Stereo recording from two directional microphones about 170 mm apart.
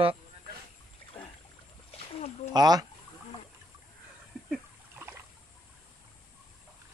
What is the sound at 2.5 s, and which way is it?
Speech, 25° right (ahead or behind).